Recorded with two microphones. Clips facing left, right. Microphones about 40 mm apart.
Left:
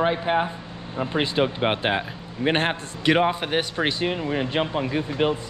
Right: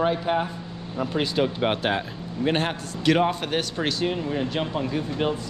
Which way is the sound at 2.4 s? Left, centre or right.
Left.